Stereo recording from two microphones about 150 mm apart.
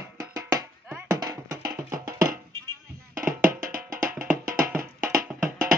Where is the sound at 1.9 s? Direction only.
75° right (ahead or behind).